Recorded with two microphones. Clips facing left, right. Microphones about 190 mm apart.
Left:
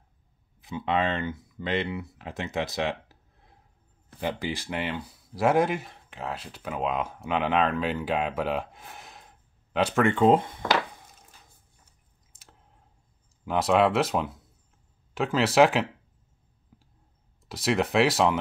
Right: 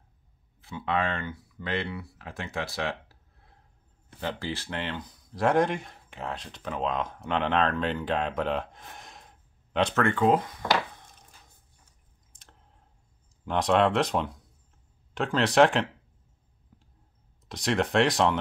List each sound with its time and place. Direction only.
0.6 s speech: 20° left (ahead or behind)
10.0 s speech: 25° left (ahead or behind)
10.7 s a sound: 5° left (ahead or behind)
12.3 s a sound: 5° left (ahead or behind)
13.5 s speech: 5° left (ahead or behind)
17.5 s speech: 5° left (ahead or behind)